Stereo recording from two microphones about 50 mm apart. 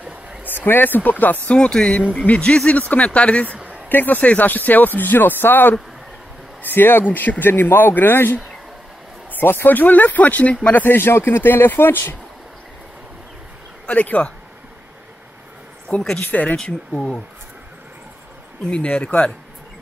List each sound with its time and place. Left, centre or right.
0.5 s speech: left
1.5 s speech: centre
3.9 s speech: left
13.8 s speech: left
16.2 s speech: left
16.5 s speech: centre
18.6 s speech: left